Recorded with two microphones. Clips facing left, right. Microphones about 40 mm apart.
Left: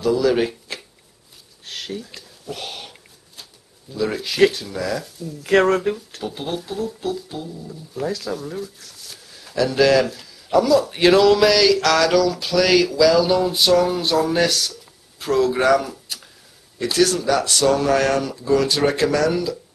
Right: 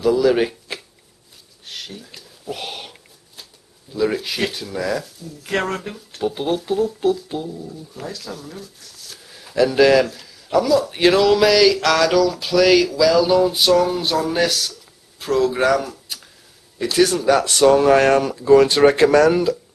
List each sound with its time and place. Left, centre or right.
0.0 s speech: centre
0.7 s shuffling cards: centre
2.0 s a sound: centre
3.9 s speech: centre
5.0 s speech: centre
6.1 s speech: centre
8.0 s a man's voice: centre
9.3 s a sound: centre
9.7 s a man's voice: centre
17.0 s speech: centre; by 19.5 s right